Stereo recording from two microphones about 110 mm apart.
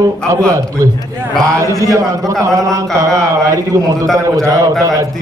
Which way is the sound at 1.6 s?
30° right (ahead or behind).